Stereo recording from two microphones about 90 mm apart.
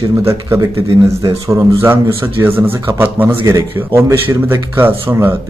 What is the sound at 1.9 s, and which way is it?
Speech, 20° right (ahead or behind).